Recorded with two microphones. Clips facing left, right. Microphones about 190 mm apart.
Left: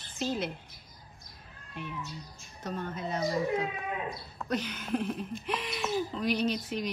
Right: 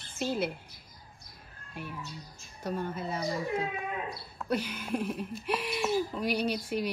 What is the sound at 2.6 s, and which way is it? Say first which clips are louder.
Speech: right 2 dB; 10° right (ahead or behind).